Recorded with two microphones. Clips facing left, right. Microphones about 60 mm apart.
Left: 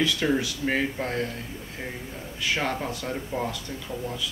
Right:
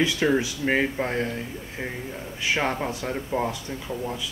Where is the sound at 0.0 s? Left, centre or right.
Right.